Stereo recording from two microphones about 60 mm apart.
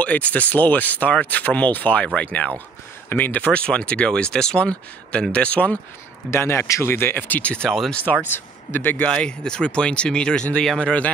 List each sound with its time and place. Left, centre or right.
0.0 s speech: left
3.1 s speech: left
6.3 s speech: left; by 11.1 s centre